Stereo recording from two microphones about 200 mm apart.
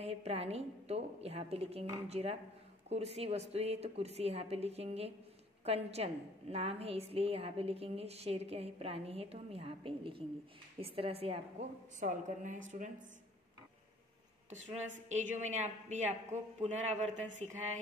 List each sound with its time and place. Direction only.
0.0 s a woman's voice: 30° right (ahead or behind)
12.0 s a woman's voice: 40° right (ahead or behind)
14.9 s a woman's voice: 40° right (ahead or behind)